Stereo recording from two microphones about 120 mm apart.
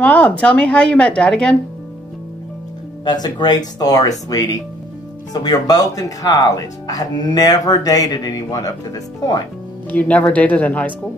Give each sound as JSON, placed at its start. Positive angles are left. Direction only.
{"t": 0.0, "sound": "a woman's voice", "side_deg": 10}
{"t": 3.1, "sound": "speech", "side_deg": 35}
{"t": 9.8, "sound": "a woman's voice", "side_deg": 10}